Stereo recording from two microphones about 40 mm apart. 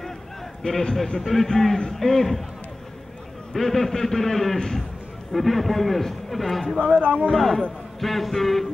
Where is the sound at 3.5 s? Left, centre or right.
Centre.